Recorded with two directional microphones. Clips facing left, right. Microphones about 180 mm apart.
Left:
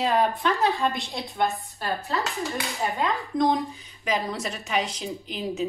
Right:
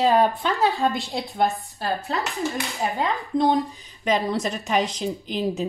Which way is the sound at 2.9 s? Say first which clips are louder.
Right 2 dB; 35° right (ahead or behind).